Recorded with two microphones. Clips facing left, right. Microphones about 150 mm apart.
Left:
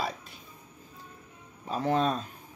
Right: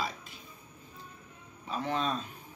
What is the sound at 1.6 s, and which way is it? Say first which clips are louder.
Speech: left 5 dB; 40° left (ahead or behind).